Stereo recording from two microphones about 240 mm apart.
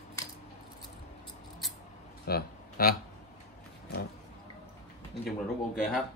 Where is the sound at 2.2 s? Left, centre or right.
Left.